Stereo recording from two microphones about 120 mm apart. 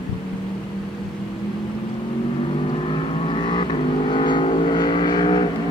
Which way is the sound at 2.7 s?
50° left (ahead or behind).